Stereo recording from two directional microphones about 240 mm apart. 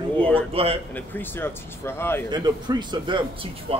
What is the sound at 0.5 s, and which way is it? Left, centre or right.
Speech, right.